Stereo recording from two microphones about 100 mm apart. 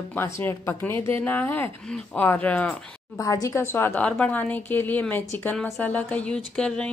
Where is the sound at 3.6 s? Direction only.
25° left (ahead or behind).